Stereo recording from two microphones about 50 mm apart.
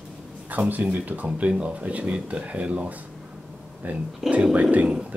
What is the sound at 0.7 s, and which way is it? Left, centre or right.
Speech, right.